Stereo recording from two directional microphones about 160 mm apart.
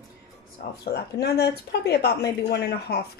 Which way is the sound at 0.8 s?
90° left.